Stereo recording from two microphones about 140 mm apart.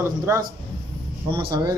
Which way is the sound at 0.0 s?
20° right (ahead or behind).